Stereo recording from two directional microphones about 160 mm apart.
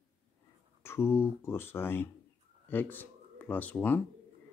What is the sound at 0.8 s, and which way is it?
Speech, 15° left (ahead or behind).